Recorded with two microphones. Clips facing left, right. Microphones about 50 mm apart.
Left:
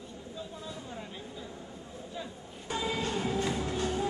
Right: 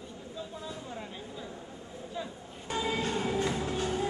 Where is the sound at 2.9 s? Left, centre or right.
Right.